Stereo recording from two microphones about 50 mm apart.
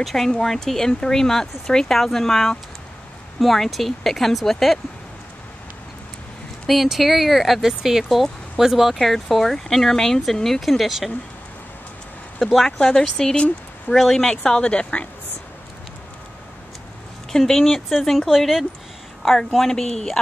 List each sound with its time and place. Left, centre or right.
0.0 s speech: centre
6.7 s speech: centre
12.5 s speech: centre
17.3 s speech: centre